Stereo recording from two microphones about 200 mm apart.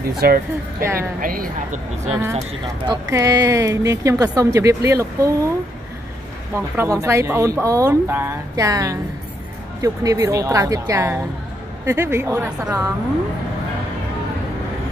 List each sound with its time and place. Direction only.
0.2 s speech: 50° right (ahead or behind)
2.9 s speech: 15° right (ahead or behind)
6.5 s speech: 15° right (ahead or behind)